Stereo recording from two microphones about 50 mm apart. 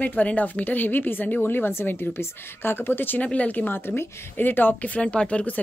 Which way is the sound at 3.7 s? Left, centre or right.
Left.